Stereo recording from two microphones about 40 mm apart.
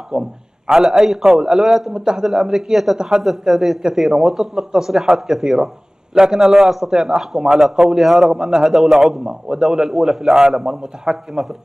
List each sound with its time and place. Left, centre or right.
0.1 s a man's voice: centre
1.9 s a man's voice: centre
3.0 s a man's voice: centre
3.3 s a man's voice: centre